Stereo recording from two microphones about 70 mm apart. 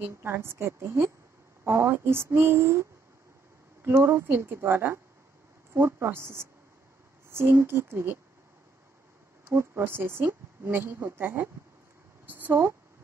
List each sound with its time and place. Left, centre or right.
0.1 s a woman's voice: right
3.9 s a woman's voice: right
9.5 s a woman's voice: right
12.3 s a sound: right